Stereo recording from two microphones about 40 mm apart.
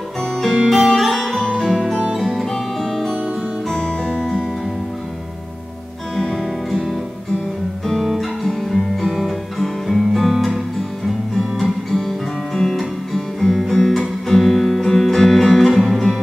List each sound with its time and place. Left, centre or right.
0.2 s music: centre
3.7 s music: centre
6.1 s music: centre
7.8 s guitar: centre
10.3 s music: centre
12.0 s music: centre